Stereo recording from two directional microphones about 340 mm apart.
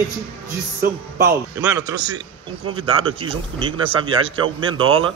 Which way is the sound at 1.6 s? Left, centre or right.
Centre.